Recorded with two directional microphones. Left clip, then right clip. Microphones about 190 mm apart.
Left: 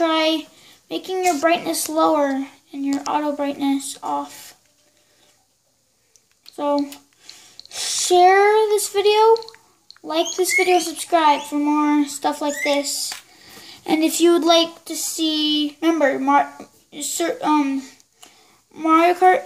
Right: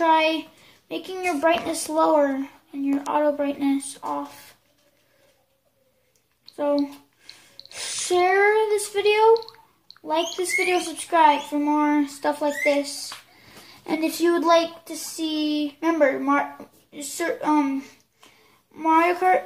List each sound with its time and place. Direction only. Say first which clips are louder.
0.0 s child singing: even; 30° left (ahead or behind)
0.8 s a child's voice: left 6 dB; 30° left (ahead or behind)
7.7 s a child's voice: left 6 dB; 35° left (ahead or behind)
18.8 s a child's voice: left 4 dB; 40° left (ahead or behind)